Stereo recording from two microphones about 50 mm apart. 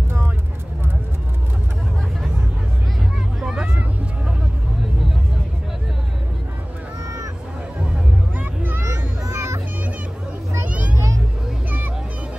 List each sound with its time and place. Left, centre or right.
3.3 s vehicle: centre
8.4 s music: right
9.3 s music: right
10.6 s vehicle: right